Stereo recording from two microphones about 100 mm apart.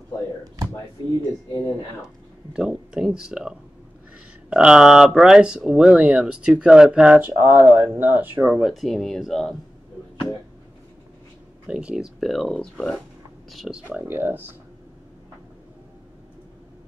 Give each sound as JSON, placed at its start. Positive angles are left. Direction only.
{"t": 1.5, "sound": "speech", "side_deg": 30}
{"t": 2.5, "sound": "speech", "side_deg": -10}
{"t": 7.2, "sound": "speech", "side_deg": -20}
{"t": 8.5, "sound": "speech", "side_deg": 0}
{"t": 11.6, "sound": "speech", "side_deg": -10}